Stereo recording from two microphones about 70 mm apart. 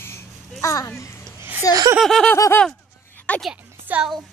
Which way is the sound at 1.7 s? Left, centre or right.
Left.